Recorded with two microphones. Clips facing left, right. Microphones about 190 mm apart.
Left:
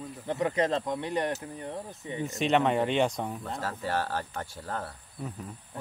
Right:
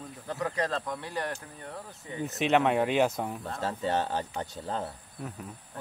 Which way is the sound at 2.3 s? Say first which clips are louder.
Right 1 dB; centre (ahead or behind).